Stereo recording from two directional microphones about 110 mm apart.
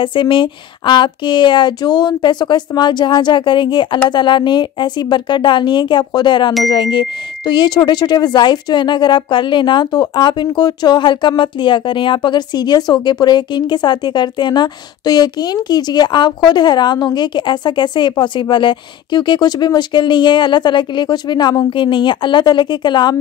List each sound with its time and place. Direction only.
0.0 s speech: 45° left (ahead or behind)